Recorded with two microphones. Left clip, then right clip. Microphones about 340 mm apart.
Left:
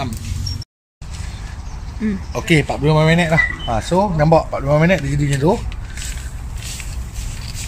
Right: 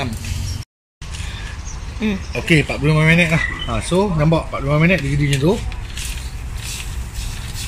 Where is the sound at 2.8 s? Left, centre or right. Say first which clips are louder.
Even; left.